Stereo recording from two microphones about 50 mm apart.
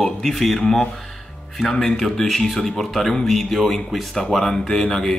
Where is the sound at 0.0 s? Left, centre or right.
Centre.